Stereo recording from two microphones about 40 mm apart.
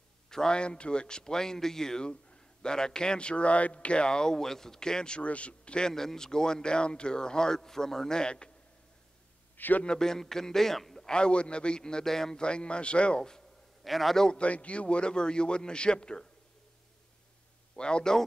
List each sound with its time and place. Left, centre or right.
0.3 s speech: centre
9.6 s a man's voice: left
9.8 s a man's voice: centre
11.1 s speech: left
12.4 s speech: left
13.8 s a man's voice: centre
14.3 s speech: left
17.7 s speech: left